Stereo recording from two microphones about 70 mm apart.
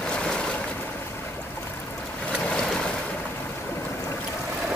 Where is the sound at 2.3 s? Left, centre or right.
Centre.